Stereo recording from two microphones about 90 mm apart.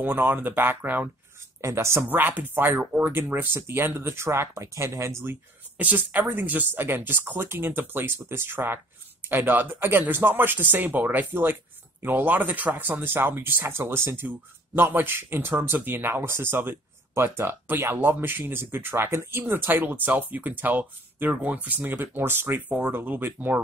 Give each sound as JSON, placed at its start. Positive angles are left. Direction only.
{"t": 0.0, "sound": "speech", "side_deg": -20}
{"t": 1.6, "sound": "speech", "side_deg": -35}
{"t": 2.0, "sound": "speech", "side_deg": -20}